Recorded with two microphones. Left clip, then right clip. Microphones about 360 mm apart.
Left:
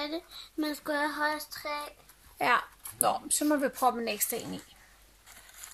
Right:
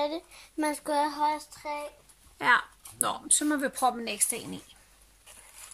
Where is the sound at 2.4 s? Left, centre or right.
Centre.